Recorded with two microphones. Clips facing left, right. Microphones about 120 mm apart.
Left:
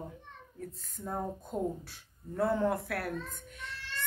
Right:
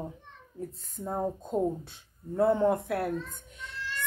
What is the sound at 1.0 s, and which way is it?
Speech, 25° right (ahead or behind).